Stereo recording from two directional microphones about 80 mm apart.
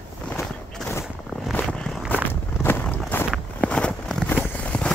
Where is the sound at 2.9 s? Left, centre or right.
Left.